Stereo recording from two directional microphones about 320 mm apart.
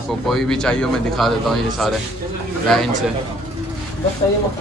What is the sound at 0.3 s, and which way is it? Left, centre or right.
A man's voice, centre.